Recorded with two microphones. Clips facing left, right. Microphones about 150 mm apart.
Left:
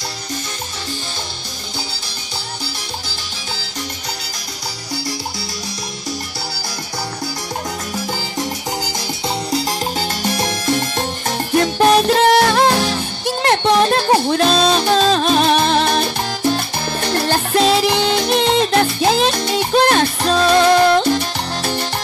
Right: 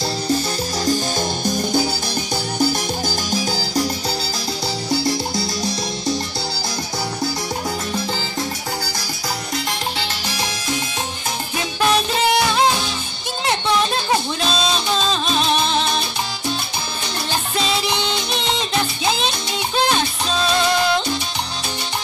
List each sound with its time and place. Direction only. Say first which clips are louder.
10.2 s music: left 7 dB; 55° left (ahead or behind)